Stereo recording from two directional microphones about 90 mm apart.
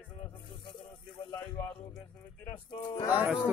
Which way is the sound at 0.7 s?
75° left (ahead or behind).